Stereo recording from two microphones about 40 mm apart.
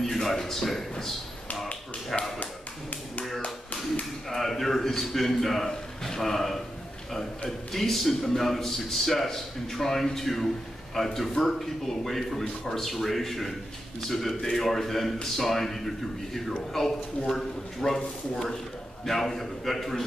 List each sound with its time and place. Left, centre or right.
0.0 s a man's voice: centre
2.4 s tap: left
4.3 s a man's voice: centre
5.7 s a sound: centre
7.1 s a man's voice: centre
17.3 s a man's voice: centre
19.0 s a man's voice: centre